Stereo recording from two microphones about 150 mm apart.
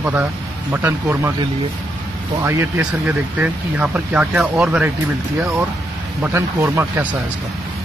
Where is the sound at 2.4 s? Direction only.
15° right (ahead or behind).